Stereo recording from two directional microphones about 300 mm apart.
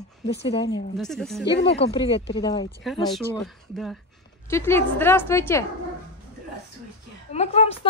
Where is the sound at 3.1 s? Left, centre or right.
Centre.